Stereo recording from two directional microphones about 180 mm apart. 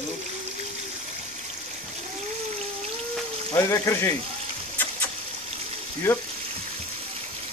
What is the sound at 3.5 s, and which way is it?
Speech, 15° left (ahead or behind).